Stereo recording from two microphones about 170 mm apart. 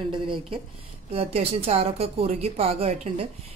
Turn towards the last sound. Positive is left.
turn(degrees=-35)  # may be behind; listen again after turning